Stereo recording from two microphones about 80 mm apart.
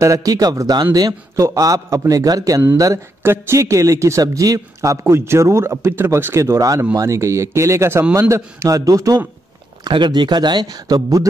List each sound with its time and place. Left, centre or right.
0.0 s a man's voice: right
3.2 s a man's voice: right
9.8 s speech: right